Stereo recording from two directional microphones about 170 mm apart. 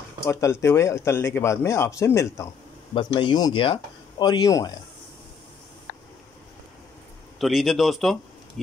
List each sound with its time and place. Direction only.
0.3 s speech: 15° left (ahead or behind)
2.9 s speech: 30° left (ahead or behind)
7.3 s speech: centre (ahead or behind)